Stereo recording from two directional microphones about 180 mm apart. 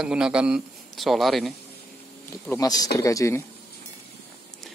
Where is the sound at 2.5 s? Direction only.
20° left (ahead or behind).